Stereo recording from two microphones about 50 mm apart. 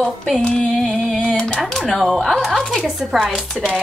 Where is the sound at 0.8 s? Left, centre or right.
Centre.